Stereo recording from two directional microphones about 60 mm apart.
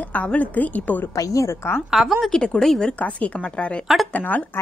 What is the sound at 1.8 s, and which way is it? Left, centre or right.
Speech, centre.